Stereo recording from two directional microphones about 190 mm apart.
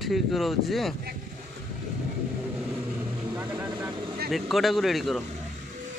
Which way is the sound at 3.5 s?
25° right (ahead or behind).